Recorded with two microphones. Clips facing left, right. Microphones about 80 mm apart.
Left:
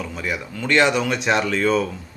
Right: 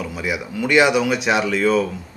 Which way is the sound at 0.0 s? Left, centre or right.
Centre.